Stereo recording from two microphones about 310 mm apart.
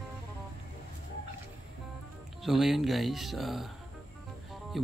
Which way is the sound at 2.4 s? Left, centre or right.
Centre.